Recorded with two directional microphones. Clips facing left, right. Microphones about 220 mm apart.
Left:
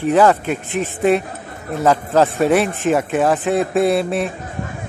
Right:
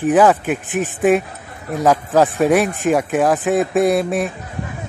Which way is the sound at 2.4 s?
10° right (ahead or behind).